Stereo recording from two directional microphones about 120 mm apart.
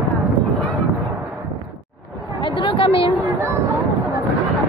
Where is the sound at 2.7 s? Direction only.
50° left (ahead or behind).